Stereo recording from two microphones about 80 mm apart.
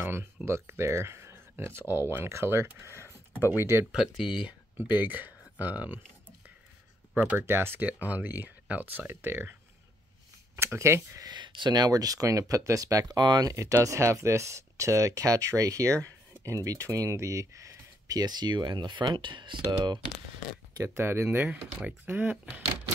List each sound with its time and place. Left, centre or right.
0.0 s a sound: right
0.5 s speech: right
3.1 s a sound: left
3.5 s speech: right
3.9 s speech: centre
4.5 s speech: right
7.3 s speech: right
10.5 s speech: right
11.2 s speech: right
13.2 s speech: right
13.5 s speech: right
20.8 s speech: right